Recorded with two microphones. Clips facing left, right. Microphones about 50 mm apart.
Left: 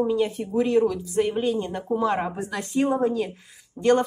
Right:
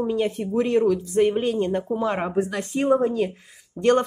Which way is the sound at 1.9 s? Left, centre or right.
Right.